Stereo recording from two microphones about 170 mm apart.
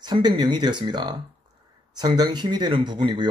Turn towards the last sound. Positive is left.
turn(degrees=-25)  # may be behind; listen again after turning